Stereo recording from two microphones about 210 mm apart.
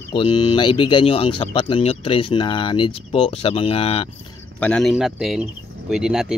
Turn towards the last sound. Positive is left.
turn(degrees=-5)  # may be behind; listen again after turning